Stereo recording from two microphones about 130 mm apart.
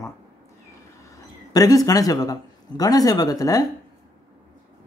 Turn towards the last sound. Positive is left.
turn(degrees=25)  # may be behind; listen again after turning